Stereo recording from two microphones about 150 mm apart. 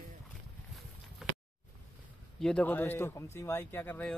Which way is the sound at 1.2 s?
5° right (ahead or behind).